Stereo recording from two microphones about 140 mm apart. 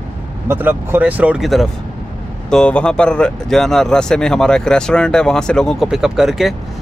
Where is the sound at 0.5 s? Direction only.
15° right (ahead or behind).